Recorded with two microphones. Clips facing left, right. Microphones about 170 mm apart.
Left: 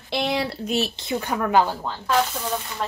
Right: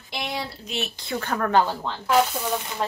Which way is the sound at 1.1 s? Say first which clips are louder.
Even; 15° left (ahead or behind).